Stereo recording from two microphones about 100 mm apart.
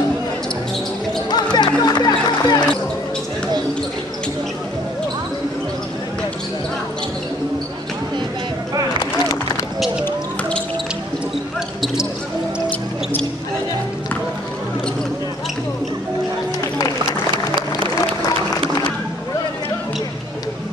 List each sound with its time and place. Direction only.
1.3 s music: 45° left (ahead or behind)